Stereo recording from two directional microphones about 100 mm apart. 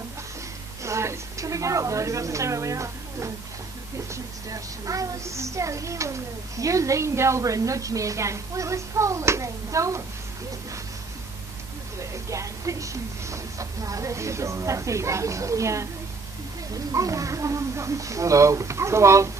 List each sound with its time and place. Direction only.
0.8 s a woman's voice: 30° right (ahead or behind)
12.0 s speech: 30° right (ahead or behind)
16.9 s speech: 35° right (ahead or behind)